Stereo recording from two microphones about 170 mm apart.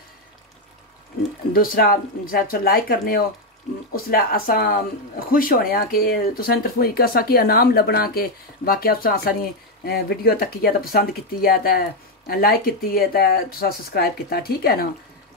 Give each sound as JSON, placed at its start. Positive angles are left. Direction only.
{"t": 1.5, "sound": "speech", "side_deg": 60}